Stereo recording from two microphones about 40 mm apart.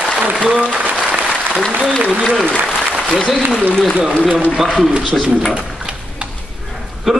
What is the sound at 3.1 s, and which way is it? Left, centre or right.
Speech, left.